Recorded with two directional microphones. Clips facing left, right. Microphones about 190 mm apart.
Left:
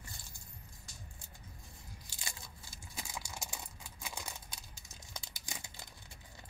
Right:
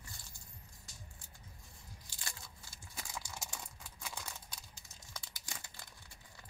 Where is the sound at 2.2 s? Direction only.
10° left (ahead or behind).